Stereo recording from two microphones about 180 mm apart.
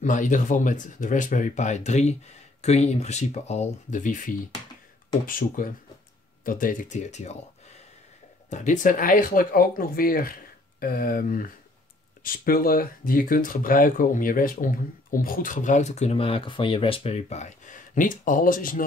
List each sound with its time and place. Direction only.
0.0 s speech: 45° left (ahead or behind)
8.5 s speech: 45° left (ahead or behind)